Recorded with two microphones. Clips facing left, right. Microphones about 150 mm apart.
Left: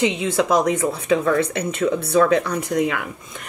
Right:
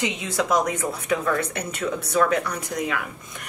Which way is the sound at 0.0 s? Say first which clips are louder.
Left 6 dB; 25° left (ahead or behind).